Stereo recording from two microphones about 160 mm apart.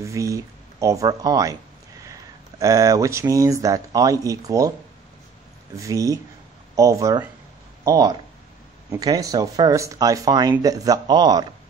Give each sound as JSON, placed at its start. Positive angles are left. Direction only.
{"t": 0.0, "sound": "speech", "side_deg": -20}
{"t": 2.6, "sound": "speech", "side_deg": -20}
{"t": 5.8, "sound": "speech", "side_deg": -20}